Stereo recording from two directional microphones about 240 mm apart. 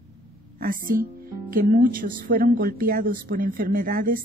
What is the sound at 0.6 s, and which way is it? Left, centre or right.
Speech, right.